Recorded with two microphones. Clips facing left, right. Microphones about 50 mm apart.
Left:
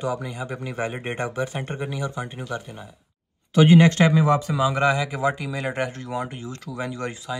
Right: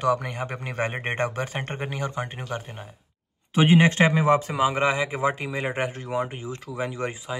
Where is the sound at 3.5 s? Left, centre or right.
Right.